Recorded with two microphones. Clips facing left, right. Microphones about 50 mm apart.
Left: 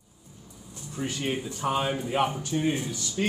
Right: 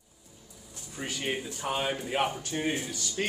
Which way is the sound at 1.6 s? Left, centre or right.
Centre.